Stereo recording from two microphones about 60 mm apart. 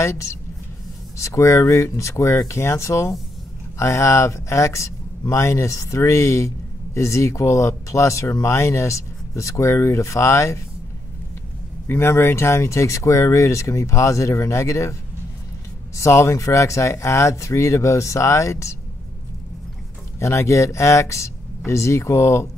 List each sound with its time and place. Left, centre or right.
0.0 s speech: left
11.9 s speech: left
16.0 s speech: left
20.2 s speech: left